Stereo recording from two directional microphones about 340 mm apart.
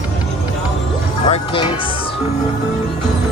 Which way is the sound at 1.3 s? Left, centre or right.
Centre.